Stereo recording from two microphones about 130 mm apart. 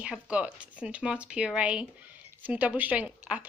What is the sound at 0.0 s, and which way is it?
A woman's voice, 10° right (ahead or behind).